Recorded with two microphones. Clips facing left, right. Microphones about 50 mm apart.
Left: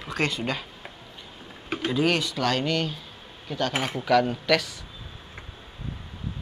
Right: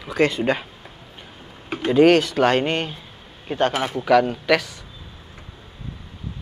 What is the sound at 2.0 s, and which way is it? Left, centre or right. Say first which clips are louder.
Speech: right 11 dB; right.